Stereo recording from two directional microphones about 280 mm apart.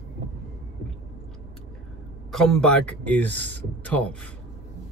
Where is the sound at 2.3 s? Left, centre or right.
Centre.